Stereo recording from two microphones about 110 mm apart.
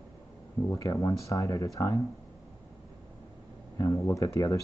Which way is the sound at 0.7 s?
30° left (ahead or behind).